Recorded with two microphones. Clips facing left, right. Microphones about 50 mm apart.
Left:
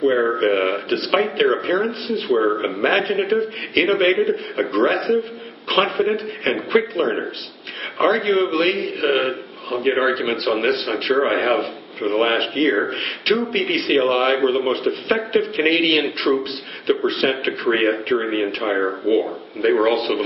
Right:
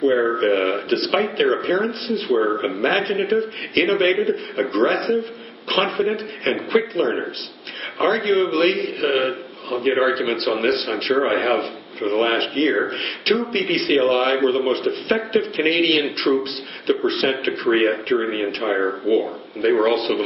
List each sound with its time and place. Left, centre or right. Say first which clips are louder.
0.0 s a sound: even; centre
0.4 s speech: even; centre
2.8 s a man's voice: left 2 dB; centre
4.7 s a man's voice: left 1 dB; centre
8.3 s a man's voice: even; centre
12.7 s speech: left 1 dB; centre
13.5 s a man's voice: even; centre